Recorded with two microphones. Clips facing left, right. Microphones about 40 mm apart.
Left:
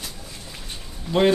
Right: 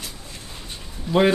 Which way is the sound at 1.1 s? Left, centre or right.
Centre.